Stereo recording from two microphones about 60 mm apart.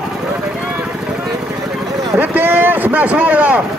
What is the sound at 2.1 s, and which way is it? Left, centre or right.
Speech, right.